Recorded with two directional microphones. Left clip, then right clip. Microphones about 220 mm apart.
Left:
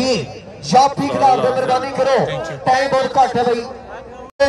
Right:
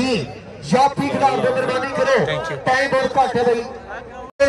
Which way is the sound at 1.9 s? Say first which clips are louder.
Even; 50° left (ahead or behind).